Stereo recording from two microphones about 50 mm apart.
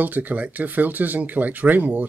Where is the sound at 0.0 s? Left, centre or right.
Right.